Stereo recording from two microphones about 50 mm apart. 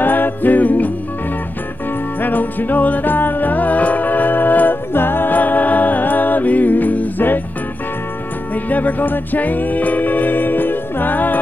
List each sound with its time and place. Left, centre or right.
0.0 s jingle bell: left
2.2 s music: left
8.6 s music: left